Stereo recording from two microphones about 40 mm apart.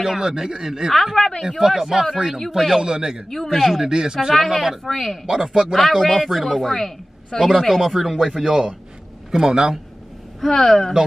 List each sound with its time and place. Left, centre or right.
0.0 s speech: centre
0.9 s a sound: centre
1.6 s speech: centre
3.4 s speech: centre
4.3 s speech: centre
5.3 s speech: centre
5.8 s speech: centre
10.4 s speech: centre